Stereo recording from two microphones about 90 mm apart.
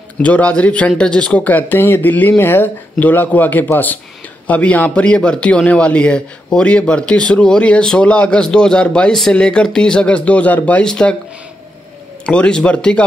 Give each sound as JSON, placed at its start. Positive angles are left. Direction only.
{"t": 0.2, "sound": "a man's voice", "side_deg": 15}
{"t": 12.3, "sound": "a man's voice", "side_deg": 10}